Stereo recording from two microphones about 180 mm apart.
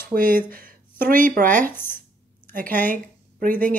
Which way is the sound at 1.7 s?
10° left (ahead or behind).